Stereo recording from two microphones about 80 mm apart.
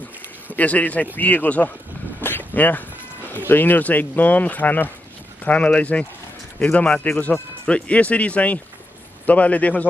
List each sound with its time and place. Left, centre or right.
0.5 s speech: centre
2.2 s a sound: left
3.3 s speech: left